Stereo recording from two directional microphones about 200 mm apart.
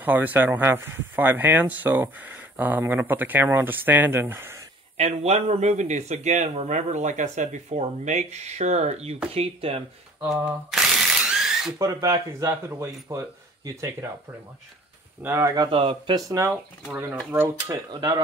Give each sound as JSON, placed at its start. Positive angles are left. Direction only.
{"t": 0.0, "sound": "speech", "side_deg": -10}
{"t": 4.9, "sound": "a man's voice", "side_deg": -35}
{"t": 10.3, "sound": "speech", "side_deg": 0}
{"t": 11.2, "sound": "mechanisms", "side_deg": 0}
{"t": 11.8, "sound": "speech", "side_deg": -20}
{"t": 15.2, "sound": "speech", "side_deg": -15}
{"t": 16.3, "sound": "speech", "side_deg": -15}